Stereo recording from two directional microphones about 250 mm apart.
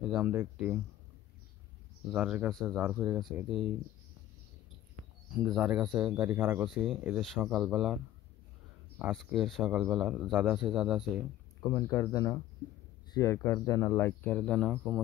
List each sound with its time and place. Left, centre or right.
0.0 s speech: centre
2.1 s speech: centre
5.0 s a sound: right
5.3 s speech: centre
11.6 s speech: centre